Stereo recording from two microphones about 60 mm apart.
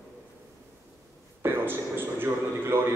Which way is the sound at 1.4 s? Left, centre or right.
Right.